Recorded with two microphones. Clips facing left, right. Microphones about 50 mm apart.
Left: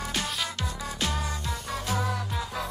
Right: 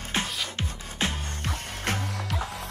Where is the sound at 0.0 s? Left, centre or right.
Right.